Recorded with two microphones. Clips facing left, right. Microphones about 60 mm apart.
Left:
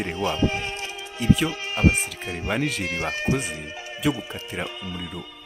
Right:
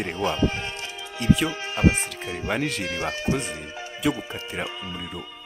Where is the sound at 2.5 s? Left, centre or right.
Centre.